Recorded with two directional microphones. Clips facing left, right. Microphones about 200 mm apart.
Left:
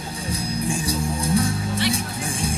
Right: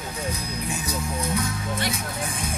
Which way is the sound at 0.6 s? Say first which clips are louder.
Left 5 dB; 30° left (ahead or behind).